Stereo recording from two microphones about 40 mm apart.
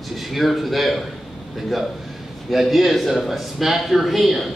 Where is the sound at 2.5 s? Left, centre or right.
Centre.